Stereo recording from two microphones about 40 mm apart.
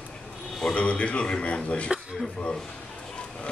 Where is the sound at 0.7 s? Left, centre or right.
Left.